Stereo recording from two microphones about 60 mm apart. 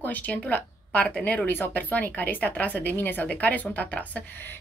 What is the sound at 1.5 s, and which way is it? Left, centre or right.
Speech, left.